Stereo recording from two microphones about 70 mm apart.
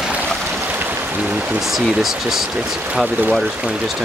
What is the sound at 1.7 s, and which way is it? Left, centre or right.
Speech, centre.